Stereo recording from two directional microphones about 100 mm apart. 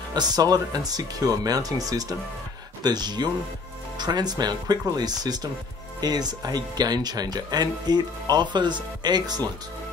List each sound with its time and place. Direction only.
0.1 s speech: 45° right (ahead or behind)